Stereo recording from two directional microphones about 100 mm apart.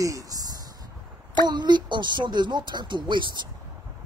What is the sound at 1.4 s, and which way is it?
Speech, 45° right (ahead or behind).